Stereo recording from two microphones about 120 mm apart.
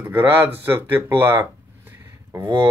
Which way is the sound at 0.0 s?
20° right (ahead or behind).